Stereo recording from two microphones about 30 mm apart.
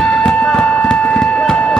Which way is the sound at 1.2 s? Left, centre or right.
Left.